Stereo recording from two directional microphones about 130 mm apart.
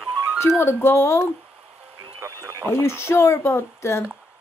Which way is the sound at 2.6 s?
20° left (ahead or behind).